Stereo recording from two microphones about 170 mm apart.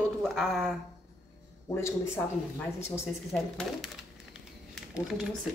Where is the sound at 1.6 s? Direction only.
15° left (ahead or behind).